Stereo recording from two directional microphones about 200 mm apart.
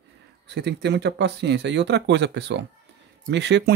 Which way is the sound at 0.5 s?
55° right (ahead or behind).